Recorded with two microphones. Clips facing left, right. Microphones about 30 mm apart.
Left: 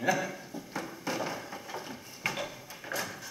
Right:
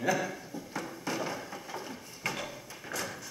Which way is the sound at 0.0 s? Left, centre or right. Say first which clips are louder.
Left 1 dB; centre.